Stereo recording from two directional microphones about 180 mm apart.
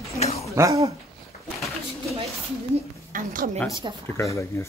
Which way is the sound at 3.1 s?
50° right (ahead or behind).